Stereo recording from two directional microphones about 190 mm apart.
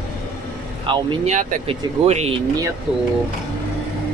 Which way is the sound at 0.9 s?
25° right (ahead or behind).